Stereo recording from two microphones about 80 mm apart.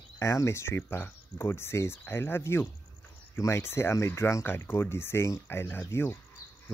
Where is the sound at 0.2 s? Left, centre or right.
Left.